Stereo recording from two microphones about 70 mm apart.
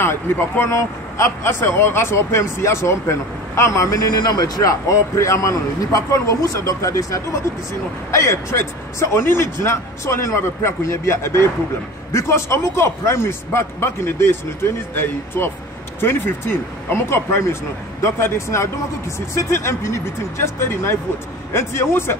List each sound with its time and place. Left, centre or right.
0.0 s a man's voice: left
4.2 s a man's voice: left